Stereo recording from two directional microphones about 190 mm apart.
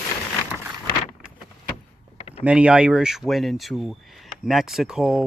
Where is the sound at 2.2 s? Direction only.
35° left (ahead or behind).